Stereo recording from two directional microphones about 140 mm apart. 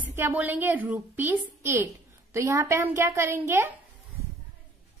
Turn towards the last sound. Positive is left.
turn(degrees=-20)  # may be behind; listen again after turning